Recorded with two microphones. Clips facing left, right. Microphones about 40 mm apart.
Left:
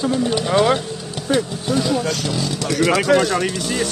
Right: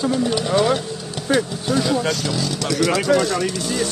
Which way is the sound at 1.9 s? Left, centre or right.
Right.